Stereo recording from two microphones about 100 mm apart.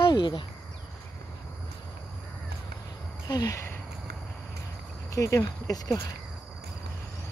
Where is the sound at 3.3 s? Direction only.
45° left (ahead or behind).